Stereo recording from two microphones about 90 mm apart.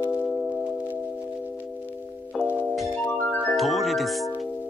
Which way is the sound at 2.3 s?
15° right (ahead or behind).